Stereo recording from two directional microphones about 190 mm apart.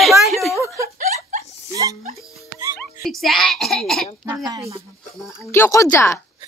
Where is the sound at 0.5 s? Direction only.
15° right (ahead or behind).